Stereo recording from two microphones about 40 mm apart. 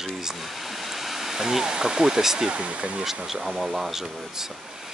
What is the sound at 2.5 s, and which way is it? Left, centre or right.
Speech, right.